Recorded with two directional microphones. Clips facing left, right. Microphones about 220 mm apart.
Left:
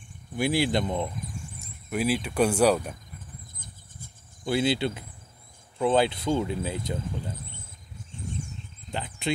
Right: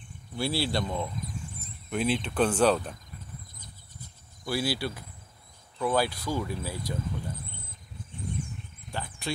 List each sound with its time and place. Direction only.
0.4 s speech: 15° left (ahead or behind)
1.9 s speech: 5° left (ahead or behind)
3.5 s a sound: 50° left (ahead or behind)
4.5 s speech: 20° left (ahead or behind)
8.9 s speech: 20° left (ahead or behind)